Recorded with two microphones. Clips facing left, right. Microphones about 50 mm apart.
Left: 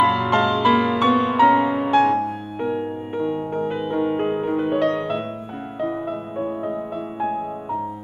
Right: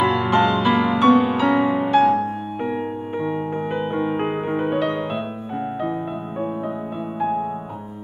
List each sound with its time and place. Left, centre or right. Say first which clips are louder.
0.0 s music: even; centre
3.9 s music: left 3 dB; centre
4.6 s music: left 1 dB; centre